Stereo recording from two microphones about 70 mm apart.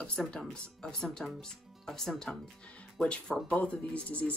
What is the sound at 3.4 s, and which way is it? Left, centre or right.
Speech, centre.